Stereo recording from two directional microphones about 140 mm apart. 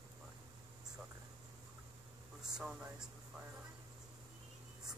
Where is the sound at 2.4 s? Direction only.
5° right (ahead or behind).